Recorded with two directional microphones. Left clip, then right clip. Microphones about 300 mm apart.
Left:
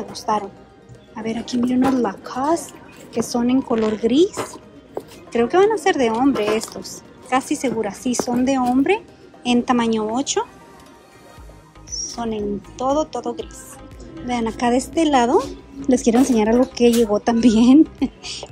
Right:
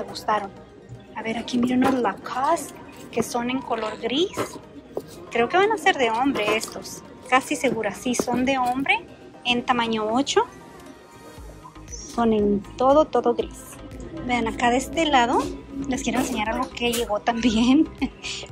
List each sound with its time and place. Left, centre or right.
0.1 s speech: centre
11.9 s music: centre
12.7 s speech: centre